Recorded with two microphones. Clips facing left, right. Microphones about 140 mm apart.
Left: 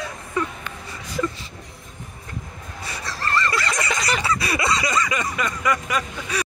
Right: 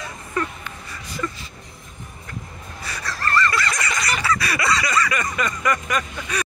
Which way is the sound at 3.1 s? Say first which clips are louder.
Right 2 dB; 25° left (ahead or behind).